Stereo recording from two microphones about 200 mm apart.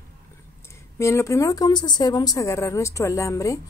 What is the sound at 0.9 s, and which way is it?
A woman's voice, 15° left (ahead or behind).